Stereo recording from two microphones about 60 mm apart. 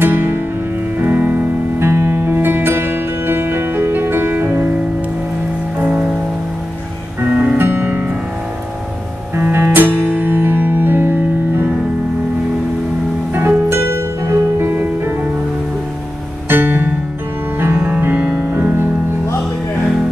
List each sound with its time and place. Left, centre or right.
0.0 s music: right
1.8 s music: right
5.8 s music: right
7.2 s music: right
7.5 s music: right
9.4 s music: right
13.3 s music: right
16.4 s music: right
18.0 s music: right